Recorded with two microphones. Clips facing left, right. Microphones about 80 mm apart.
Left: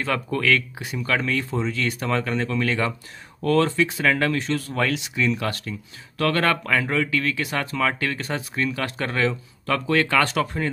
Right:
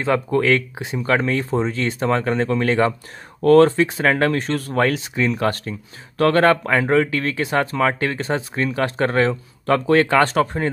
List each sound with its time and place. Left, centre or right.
0.0 s speech: right